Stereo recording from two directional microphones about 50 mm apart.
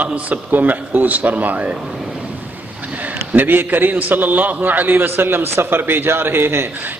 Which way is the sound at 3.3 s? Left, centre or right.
Right.